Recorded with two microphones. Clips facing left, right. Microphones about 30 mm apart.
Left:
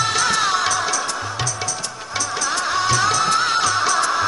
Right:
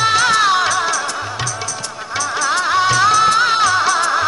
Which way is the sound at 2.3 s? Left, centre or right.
Right.